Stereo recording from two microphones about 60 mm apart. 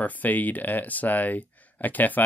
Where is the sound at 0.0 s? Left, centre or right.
Left.